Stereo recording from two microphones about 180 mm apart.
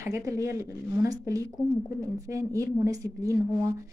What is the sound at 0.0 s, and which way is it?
A woman's voice, 15° right (ahead or behind).